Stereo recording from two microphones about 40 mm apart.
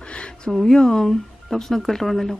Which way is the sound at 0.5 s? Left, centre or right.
Centre.